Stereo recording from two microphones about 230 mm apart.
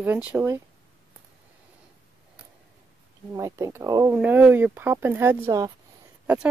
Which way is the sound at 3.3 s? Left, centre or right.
Centre.